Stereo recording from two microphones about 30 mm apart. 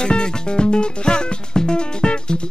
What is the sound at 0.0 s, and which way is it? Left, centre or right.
Music, left.